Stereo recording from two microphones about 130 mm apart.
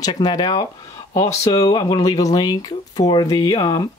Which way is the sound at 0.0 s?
30° left (ahead or behind).